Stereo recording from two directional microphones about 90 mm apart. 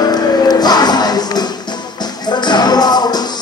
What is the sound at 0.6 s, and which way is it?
Music, 50° left (ahead or behind).